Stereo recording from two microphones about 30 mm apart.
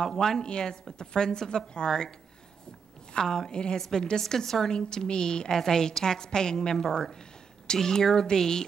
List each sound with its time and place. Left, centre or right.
0.0 s speech: centre
0.4 s a woman's voice: left
4.2 s speech: centre
4.7 s a woman's voice: left